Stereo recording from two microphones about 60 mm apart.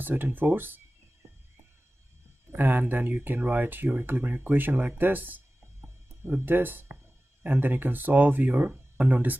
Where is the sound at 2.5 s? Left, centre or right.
Right.